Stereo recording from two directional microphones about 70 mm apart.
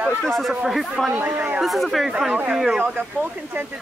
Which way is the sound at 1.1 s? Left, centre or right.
Right.